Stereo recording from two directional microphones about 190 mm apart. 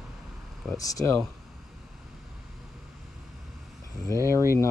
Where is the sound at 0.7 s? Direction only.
20° left (ahead or behind).